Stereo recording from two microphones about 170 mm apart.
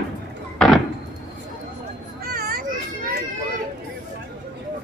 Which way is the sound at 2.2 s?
60° right (ahead or behind).